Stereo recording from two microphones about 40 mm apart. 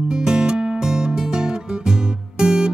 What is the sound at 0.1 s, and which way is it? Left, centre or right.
Music, centre.